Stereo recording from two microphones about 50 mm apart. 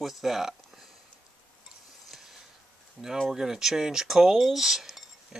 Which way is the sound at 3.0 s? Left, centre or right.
Centre.